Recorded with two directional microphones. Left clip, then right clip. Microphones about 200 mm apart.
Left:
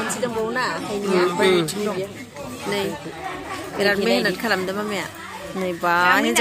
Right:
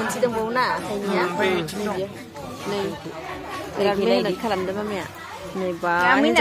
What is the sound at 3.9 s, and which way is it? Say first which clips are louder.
Speech: even; 20° left (ahead or behind).